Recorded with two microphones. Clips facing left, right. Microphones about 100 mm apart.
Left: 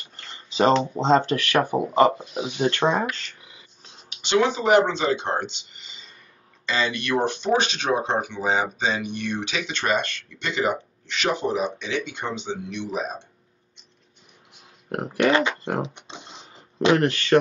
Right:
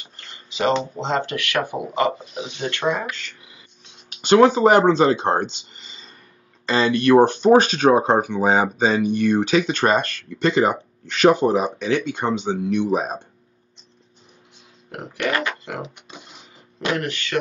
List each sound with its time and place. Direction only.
0.3 s a sound: 30° left (ahead or behind)
0.9 s speech: 35° left (ahead or behind)
2.1 s speech: centre (ahead or behind)
2.8 s speech: 30° left (ahead or behind)
4.2 s speech: 45° right (ahead or behind)
15.1 s speech: 20° left (ahead or behind)
15.8 s typing: 25° left (ahead or behind)
16.9 s speech: 35° left (ahead or behind)